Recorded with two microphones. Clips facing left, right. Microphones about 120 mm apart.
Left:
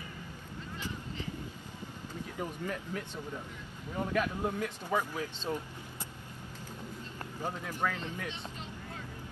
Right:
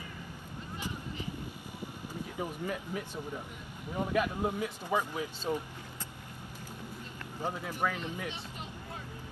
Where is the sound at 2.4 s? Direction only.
10° right (ahead or behind).